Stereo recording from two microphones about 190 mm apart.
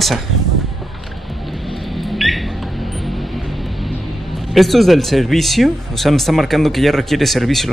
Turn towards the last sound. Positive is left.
turn(degrees=0)  # may be behind; listen again after turning